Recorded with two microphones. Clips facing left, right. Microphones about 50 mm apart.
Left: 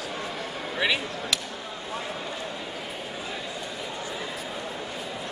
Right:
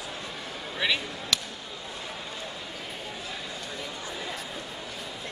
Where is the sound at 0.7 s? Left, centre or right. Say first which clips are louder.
Left 2 dB; centre.